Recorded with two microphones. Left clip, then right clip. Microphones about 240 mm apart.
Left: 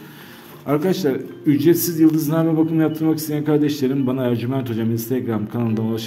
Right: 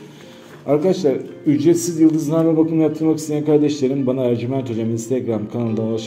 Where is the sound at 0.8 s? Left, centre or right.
Left.